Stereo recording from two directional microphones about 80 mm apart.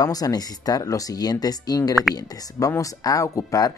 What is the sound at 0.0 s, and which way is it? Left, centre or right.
Speech, left.